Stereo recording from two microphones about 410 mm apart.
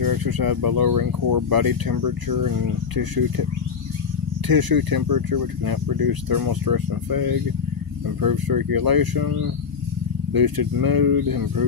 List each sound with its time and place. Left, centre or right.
0.0 s speech: right
4.5 s speech: right